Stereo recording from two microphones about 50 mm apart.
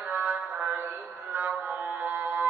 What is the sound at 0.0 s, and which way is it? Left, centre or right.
Music, right.